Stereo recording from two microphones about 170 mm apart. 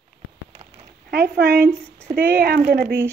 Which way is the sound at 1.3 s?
70° right (ahead or behind).